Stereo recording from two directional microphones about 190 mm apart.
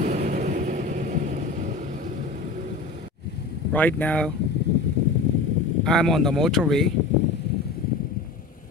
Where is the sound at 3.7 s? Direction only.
10° left (ahead or behind).